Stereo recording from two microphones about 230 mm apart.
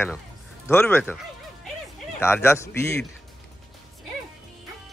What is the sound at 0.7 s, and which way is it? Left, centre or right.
Speech, centre.